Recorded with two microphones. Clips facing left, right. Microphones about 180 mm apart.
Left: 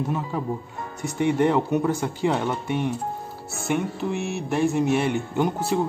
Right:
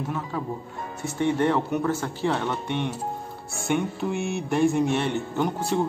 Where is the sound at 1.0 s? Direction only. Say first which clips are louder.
Left 2 dB; 15° left (ahead or behind).